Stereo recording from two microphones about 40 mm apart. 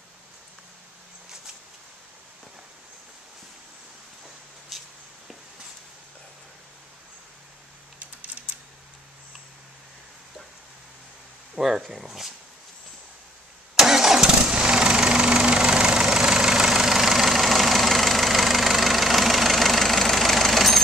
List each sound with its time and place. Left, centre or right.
4.7 s a sound: centre
11.5 s speech: centre
13.7 s vehicle: centre
14.5 s engine: right; by 20.8 s centre